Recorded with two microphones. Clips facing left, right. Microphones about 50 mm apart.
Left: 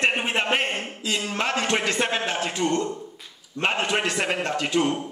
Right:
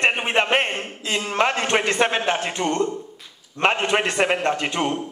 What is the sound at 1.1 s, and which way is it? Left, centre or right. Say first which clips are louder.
A man's voice: right 4 dB; right.